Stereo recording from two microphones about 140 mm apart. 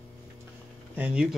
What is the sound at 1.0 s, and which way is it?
Speech, 10° right (ahead or behind).